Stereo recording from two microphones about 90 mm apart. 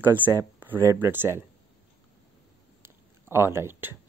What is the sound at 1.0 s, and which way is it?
Speech, 25° right (ahead or behind).